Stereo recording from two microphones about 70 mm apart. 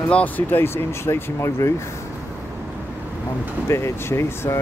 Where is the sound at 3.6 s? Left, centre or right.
Left.